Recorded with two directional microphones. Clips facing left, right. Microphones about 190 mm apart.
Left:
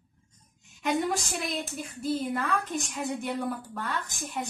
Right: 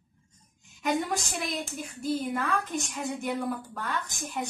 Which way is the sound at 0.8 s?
Centre (ahead or behind).